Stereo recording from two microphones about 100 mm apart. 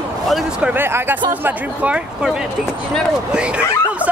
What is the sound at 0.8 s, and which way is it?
Speech, 25° right (ahead or behind).